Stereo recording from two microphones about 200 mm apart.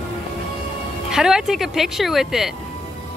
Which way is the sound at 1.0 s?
5° right (ahead or behind).